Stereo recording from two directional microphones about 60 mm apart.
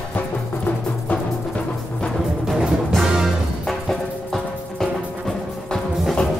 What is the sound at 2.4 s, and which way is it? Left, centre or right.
Music, centre.